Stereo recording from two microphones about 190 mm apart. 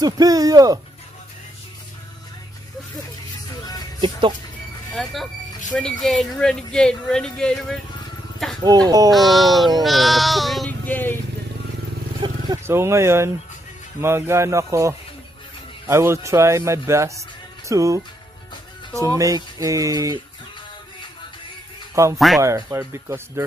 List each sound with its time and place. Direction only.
0.0 s speech: 20° right (ahead or behind)
4.9 s speech: centre (ahead or behind)
8.6 s speech: 20° right (ahead or behind)
9.1 s speech: centre (ahead or behind)
12.2 s speech: 15° right (ahead or behind)
21.9 s speech: 15° right (ahead or behind)